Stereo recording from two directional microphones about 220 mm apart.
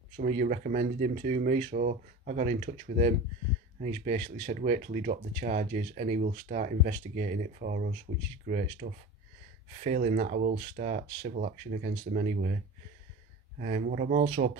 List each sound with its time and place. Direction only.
0.2 s speech: 35° right (ahead or behind)
13.6 s speech: 35° right (ahead or behind)
14.2 s speech: 30° right (ahead or behind)